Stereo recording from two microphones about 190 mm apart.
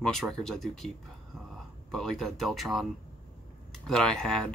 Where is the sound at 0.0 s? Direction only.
Centre (ahead or behind).